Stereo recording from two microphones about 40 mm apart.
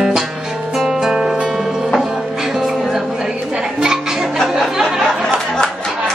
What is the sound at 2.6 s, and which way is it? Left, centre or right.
Music, centre.